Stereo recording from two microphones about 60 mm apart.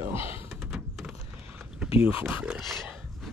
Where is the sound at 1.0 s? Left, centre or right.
Centre.